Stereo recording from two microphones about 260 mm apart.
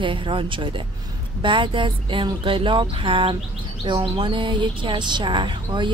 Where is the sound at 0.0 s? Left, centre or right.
Centre.